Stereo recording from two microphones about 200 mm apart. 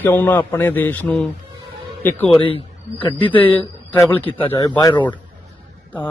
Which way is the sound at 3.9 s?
10° left (ahead or behind).